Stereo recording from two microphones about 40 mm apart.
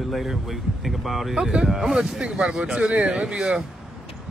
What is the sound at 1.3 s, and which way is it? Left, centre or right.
Speech, centre.